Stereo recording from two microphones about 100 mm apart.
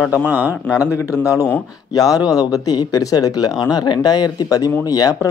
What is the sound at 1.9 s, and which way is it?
Speech, 40° left (ahead or behind).